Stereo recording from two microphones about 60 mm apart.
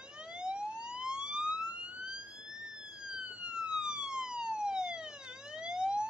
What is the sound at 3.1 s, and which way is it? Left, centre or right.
Police car, centre.